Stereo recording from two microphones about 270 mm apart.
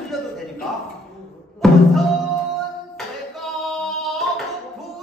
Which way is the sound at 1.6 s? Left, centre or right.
Centre.